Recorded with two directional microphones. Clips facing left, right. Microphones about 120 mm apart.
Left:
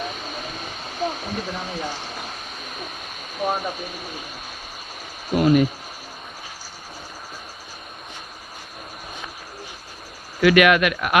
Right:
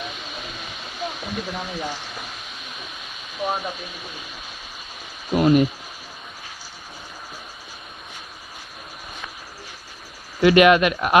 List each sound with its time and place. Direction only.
0.0 s a sound: 40° left (ahead or behind)
3.4 s speech: centre (ahead or behind)
3.7 s speech: 45° left (ahead or behind)
5.4 s speech: 30° right (ahead or behind)
10.4 s speech: 25° right (ahead or behind)